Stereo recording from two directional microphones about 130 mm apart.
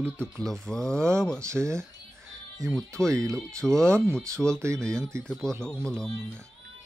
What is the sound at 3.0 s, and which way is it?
Speech, 25° right (ahead or behind).